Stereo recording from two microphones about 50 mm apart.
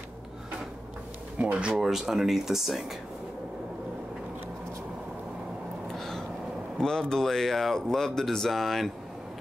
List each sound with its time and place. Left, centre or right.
1.4 s speech: right
1.8 s speech: centre
5.9 s a sound: centre
6.8 s speech: centre